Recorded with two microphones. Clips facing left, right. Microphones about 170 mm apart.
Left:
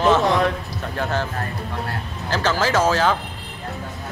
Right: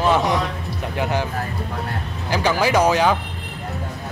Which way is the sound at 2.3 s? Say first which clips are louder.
Right 2 dB; 15° right (ahead or behind).